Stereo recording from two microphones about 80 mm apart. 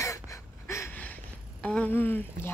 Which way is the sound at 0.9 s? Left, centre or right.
Left.